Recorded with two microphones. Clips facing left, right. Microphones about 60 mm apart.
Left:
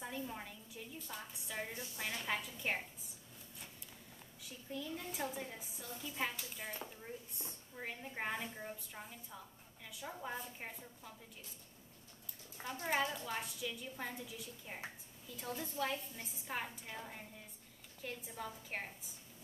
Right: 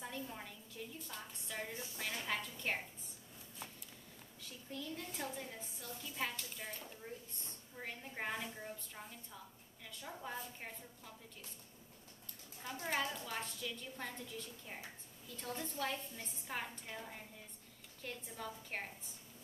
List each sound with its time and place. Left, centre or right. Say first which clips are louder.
0.0 s a woman's voice: left 2 dB; centre
4.4 s a woman's voice: left 2 dB; centre
12.6 s a woman's voice: left 2 dB; centre